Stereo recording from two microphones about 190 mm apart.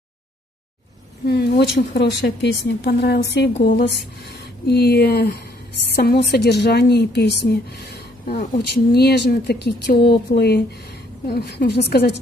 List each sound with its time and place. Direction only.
1.2 s a woman's voice: 55° left (ahead or behind)